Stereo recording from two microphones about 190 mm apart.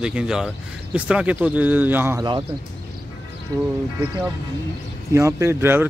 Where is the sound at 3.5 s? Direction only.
20° right (ahead or behind).